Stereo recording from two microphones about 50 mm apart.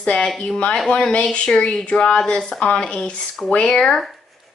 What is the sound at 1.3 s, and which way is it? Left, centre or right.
Speech, centre.